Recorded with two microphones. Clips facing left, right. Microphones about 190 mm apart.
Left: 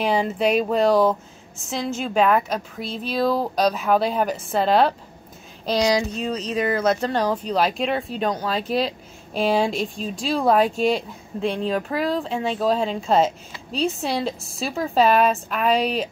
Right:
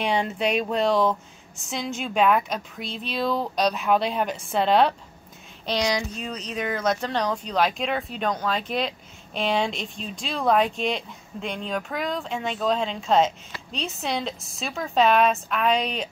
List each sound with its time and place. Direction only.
0.0 s a woman's voice: 5° left (ahead or behind)
6.2 s a woman's voice: centre (ahead or behind)
8.6 s speech: 35° left (ahead or behind)
9.3 s a woman's voice: 5° left (ahead or behind)
11.4 s speech: 35° left (ahead or behind)
12.5 s a woman's voice: 5° left (ahead or behind)